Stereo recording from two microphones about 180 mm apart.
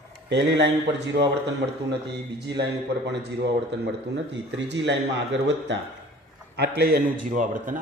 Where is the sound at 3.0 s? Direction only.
70° right (ahead or behind).